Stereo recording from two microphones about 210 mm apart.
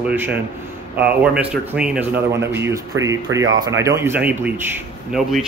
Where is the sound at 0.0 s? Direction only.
10° right (ahead or behind).